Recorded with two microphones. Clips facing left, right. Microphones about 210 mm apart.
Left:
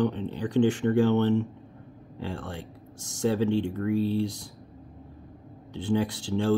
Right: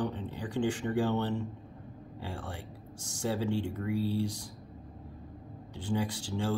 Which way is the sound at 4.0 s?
25° left (ahead or behind).